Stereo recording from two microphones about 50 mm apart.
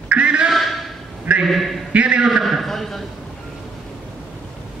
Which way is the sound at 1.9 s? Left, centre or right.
Right.